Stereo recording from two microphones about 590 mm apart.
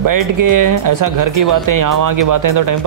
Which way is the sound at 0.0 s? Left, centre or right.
Right.